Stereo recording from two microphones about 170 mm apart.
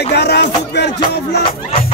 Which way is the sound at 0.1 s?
80° left.